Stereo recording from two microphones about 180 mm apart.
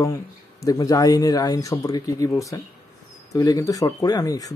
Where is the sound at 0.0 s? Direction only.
20° left (ahead or behind).